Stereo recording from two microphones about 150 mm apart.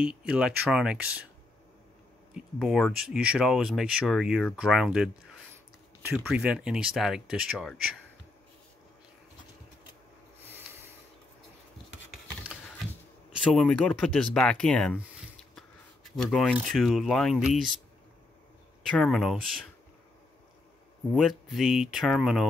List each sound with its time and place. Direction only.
0.0 s speech: 5° right (ahead or behind)
2.3 s speech: centre (ahead or behind)
10.5 s snort: 15° right (ahead or behind)
13.4 s speech: 5° left (ahead or behind)
15.5 s a sound: centre (ahead or behind)
16.6 s speech: centre (ahead or behind)
18.9 s speech: 5° left (ahead or behind)
21.1 s speech: centre (ahead or behind)